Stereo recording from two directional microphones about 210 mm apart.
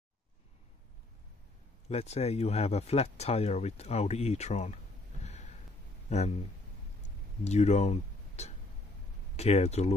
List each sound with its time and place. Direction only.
1.9 s speech: 30° left (ahead or behind)
5.2 s a sound: 30° left (ahead or behind)
6.0 s speech: 30° left (ahead or behind)
7.4 s speech: 30° left (ahead or behind)